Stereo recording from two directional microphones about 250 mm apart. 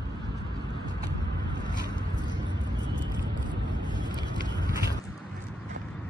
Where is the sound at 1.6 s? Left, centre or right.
Centre.